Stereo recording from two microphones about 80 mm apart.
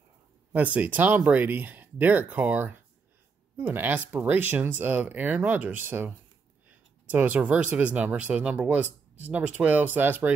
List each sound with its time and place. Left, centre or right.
0.5 s speech: right